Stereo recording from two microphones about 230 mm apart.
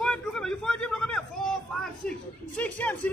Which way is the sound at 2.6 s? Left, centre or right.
Centre.